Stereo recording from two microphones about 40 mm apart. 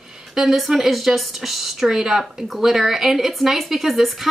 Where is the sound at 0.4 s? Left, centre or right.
Centre.